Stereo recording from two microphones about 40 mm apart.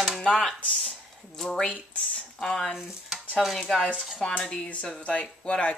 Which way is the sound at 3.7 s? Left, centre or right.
Centre.